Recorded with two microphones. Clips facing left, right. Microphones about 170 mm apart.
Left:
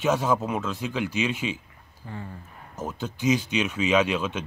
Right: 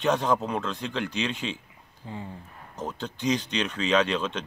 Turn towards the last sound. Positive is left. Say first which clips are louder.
# left 1 dB
turn(degrees=10)  # may be behind; listen again after turning